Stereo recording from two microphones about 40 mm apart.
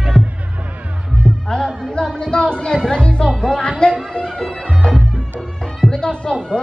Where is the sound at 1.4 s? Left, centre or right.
Centre.